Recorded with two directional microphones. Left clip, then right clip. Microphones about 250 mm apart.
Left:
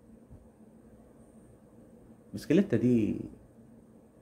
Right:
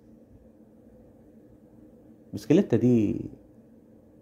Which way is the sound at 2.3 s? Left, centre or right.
Centre.